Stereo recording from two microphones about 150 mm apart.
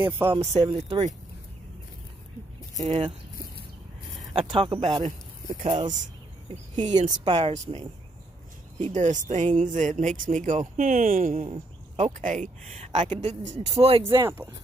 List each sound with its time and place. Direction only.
0.0 s speech: 15° right (ahead or behind)
0.7 s speech: 35° right (ahead or behind)
4.3 s speech: 35° right (ahead or behind)
5.0 s speech: 55° right (ahead or behind)
5.7 s speech: 35° right (ahead or behind)
6.5 s speech: 50° right (ahead or behind)
7.2 s speech: 30° right (ahead or behind)
8.9 s speech: 55° right (ahead or behind)
11.4 s speech: 50° right (ahead or behind)
12.9 s speech: 35° right (ahead or behind)
14.1 s speech: 15° right (ahead or behind)